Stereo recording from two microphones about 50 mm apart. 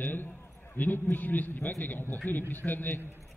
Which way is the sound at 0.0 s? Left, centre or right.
Left.